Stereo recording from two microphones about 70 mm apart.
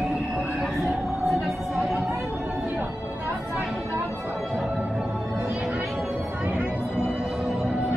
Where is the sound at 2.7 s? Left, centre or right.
Right.